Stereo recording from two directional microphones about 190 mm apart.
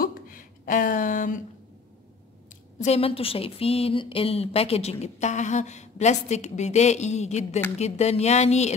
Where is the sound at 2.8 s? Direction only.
30° left (ahead or behind).